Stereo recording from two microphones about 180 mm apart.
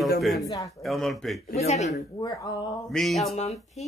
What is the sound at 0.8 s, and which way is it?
Speech, centre (ahead or behind).